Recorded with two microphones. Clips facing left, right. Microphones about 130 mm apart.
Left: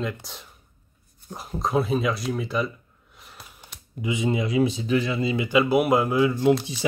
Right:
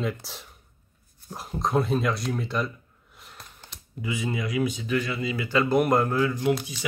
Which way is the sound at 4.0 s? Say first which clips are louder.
Left 5 dB; 20° left (ahead or behind).